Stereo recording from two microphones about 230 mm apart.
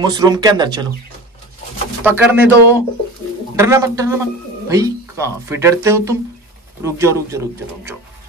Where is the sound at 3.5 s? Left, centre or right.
Centre.